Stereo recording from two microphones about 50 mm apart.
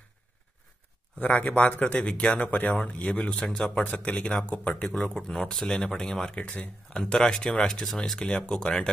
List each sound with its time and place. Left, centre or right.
1.2 s speech: left
1.9 s speech: left
3.8 s speech: left
5.1 s speech: centre